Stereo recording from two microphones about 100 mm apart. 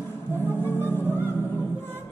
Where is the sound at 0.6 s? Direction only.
20° left (ahead or behind).